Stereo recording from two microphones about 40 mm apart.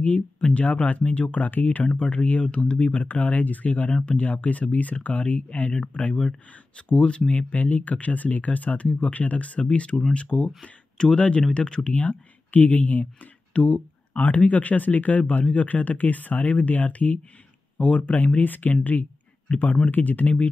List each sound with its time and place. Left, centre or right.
0.0 s speech: left
6.9 s speech: left